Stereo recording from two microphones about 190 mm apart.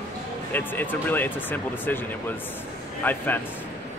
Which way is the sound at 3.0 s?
10° left (ahead or behind).